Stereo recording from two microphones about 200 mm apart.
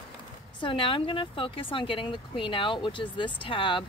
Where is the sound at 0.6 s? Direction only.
25° left (ahead or behind).